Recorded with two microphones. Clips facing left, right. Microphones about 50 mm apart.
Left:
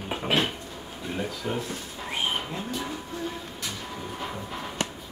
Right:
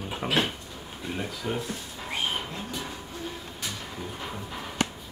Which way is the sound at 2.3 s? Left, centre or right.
Centre.